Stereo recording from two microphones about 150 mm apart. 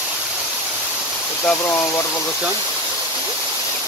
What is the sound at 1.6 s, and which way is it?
Speech, 15° left (ahead or behind).